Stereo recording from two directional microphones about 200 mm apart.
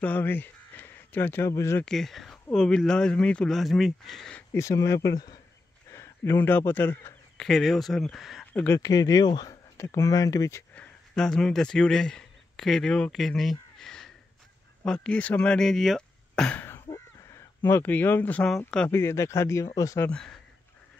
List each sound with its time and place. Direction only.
0.0 s speech: 10° left (ahead or behind)
1.9 s a man's voice: centre (ahead or behind)
8.6 s speech: 15° left (ahead or behind)
20.1 s speech: 5° left (ahead or behind)